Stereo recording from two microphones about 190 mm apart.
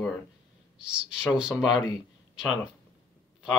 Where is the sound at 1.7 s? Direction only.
20° left (ahead or behind).